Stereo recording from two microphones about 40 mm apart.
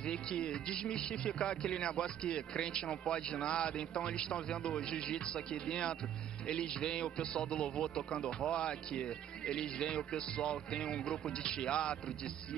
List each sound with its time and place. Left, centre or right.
0.0 s speech: left
10.8 s speech: centre
11.4 s speech: left